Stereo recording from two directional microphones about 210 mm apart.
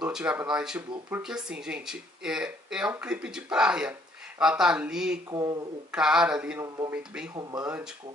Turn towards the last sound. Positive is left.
turn(degrees=-5)  # may be behind; listen again after turning